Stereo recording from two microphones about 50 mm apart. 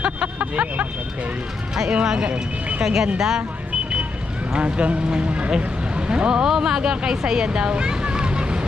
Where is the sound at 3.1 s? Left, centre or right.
Centre.